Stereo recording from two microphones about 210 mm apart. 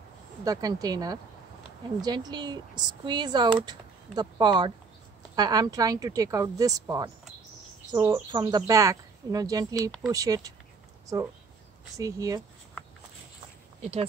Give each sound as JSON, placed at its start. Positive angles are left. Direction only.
{"t": 0.4, "sound": "speech", "side_deg": -15}